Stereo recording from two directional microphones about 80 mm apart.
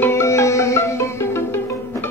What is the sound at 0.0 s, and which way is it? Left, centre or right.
Music, left.